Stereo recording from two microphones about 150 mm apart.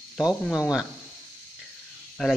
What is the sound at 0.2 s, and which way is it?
Speech, 5° right (ahead or behind).